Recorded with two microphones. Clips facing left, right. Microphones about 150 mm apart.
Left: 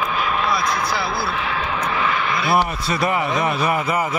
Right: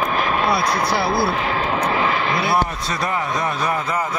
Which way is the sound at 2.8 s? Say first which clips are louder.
Left 3 dB; 5° left (ahead or behind).